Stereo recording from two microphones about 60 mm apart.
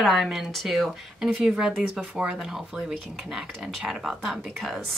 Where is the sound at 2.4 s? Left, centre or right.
Centre.